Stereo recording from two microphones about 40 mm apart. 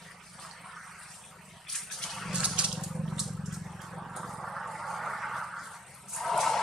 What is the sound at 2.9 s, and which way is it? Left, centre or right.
Vehicle, centre.